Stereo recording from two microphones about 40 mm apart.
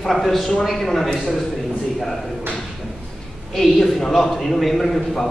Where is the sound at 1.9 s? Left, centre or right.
Centre.